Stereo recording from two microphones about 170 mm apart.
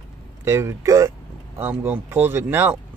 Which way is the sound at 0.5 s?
15° right (ahead or behind).